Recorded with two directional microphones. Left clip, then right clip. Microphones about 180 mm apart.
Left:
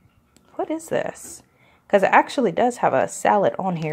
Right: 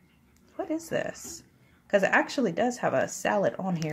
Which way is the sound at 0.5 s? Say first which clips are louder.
Left 6 dB; 35° left (ahead or behind).